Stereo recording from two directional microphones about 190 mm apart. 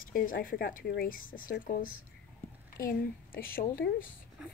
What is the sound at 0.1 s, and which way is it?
Speech, 45° left (ahead or behind).